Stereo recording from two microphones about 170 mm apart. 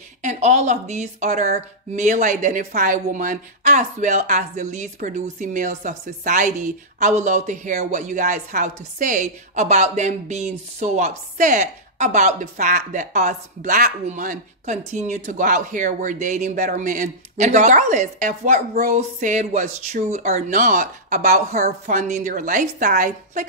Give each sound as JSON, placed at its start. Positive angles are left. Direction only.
{"t": 0.2, "sound": "a woman's voice", "side_deg": -45}